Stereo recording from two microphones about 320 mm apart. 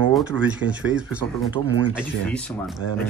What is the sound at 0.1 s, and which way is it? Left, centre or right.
Speech, centre.